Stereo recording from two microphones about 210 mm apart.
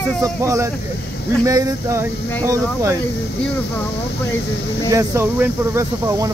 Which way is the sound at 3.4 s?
10° left (ahead or behind).